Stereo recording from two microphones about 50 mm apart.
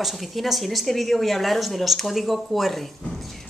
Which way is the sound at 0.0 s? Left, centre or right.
Centre.